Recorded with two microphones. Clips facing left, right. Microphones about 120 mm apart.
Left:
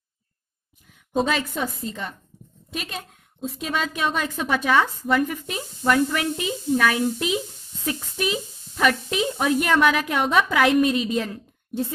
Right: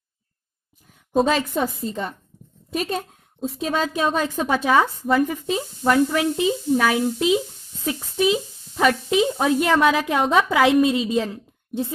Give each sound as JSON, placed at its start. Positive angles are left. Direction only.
{"t": 1.2, "sound": "a woman's voice", "side_deg": -35}
{"t": 5.2, "sound": "a woman's voice", "side_deg": -20}